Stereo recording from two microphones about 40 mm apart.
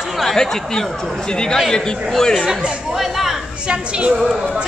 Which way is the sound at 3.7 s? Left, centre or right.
Right.